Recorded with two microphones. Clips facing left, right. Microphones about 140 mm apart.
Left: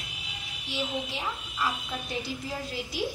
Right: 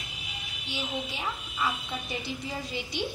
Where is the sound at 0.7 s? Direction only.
Centre (ahead or behind).